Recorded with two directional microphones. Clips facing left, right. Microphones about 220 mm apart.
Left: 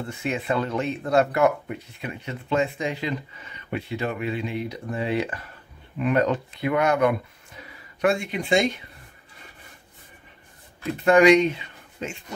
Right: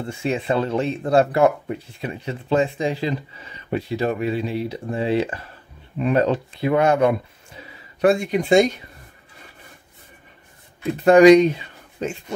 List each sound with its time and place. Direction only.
0.0 s speech: 30° right (ahead or behind)
11.1 s speech: 35° right (ahead or behind)